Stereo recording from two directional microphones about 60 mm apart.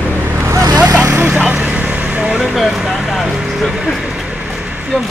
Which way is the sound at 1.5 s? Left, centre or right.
Right.